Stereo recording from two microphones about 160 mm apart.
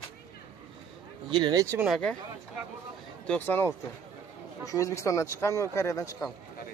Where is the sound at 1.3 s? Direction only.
25° right (ahead or behind).